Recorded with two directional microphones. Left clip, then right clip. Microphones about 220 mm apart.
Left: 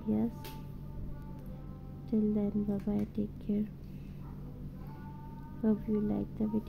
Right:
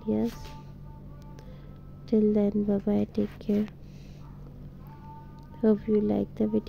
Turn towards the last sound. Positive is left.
turn(degrees=-20)  # may be behind; listen again after turning